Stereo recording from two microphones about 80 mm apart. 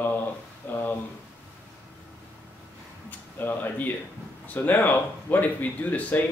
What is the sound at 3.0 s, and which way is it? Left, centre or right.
Speech, left.